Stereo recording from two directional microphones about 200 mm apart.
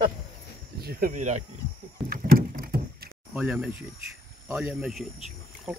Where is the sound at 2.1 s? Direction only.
50° right (ahead or behind).